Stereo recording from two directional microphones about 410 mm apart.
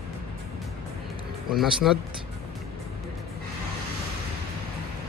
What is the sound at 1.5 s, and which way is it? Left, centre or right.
Speech, centre.